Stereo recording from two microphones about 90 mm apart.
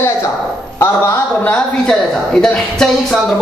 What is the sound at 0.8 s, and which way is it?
Speech, 30° left (ahead or behind).